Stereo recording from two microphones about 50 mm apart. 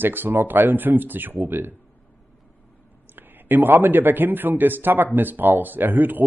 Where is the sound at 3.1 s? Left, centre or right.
Right.